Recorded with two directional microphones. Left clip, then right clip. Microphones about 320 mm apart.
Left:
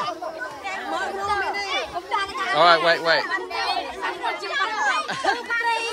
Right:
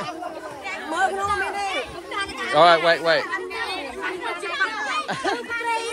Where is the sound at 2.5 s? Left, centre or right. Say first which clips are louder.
Right 1 dB; centre.